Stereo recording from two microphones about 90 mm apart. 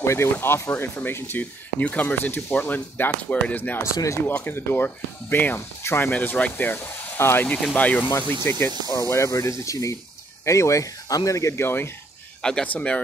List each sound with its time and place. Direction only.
0.0 s speech: 30° left (ahead or behind)
3.8 s speech: 35° left (ahead or behind)
4.3 s speech: 25° left (ahead or behind)
7.4 s speech: 15° left (ahead or behind)
12.4 s speech: 5° left (ahead or behind)